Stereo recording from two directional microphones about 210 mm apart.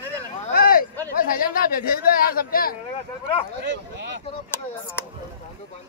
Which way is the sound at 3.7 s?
60° right (ahead or behind).